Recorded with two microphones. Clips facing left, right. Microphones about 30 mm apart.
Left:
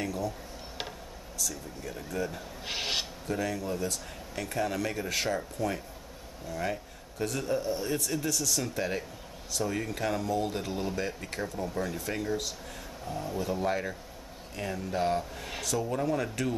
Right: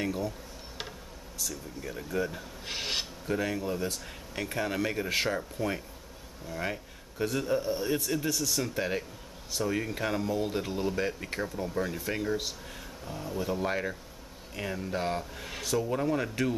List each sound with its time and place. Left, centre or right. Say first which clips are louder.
0.0 s speech: right 1 dB; right
1.8 s speech: right 2 dB; centre
2.6 s filing: left 1 dB; centre
3.3 s speech: right 2 dB; centre
11.0 s speech: right 2 dB; centre